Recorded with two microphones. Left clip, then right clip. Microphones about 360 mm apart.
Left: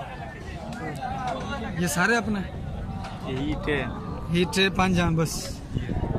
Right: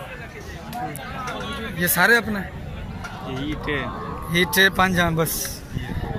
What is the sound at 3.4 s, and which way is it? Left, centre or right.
Speech, left.